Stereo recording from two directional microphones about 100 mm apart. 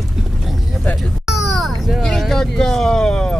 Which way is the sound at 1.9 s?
5° left (ahead or behind).